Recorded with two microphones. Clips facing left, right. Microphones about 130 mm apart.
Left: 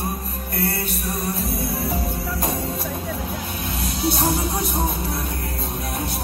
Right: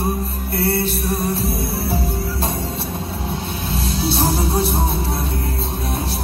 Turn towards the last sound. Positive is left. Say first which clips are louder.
# right 4 dB
turn(degrees=-30)  # may be behind; listen again after turning